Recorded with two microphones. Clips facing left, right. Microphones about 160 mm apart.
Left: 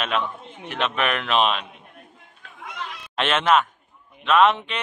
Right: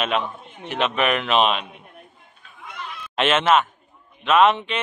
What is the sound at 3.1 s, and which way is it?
Speech, 5° right (ahead or behind).